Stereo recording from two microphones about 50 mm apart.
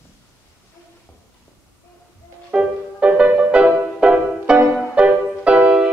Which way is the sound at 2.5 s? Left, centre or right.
Right.